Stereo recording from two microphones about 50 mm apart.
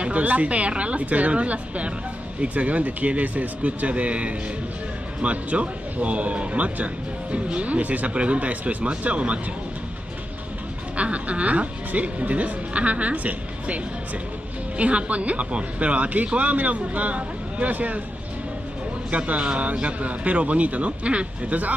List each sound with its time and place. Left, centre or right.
0.0 s speech: right
11.0 s speech: right
14.8 s speech: right
19.0 s speech: right